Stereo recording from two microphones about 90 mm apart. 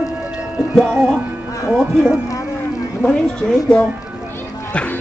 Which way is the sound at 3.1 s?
10° left (ahead or behind).